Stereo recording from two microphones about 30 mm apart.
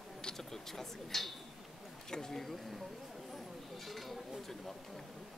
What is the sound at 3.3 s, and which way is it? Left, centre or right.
Chatter, centre.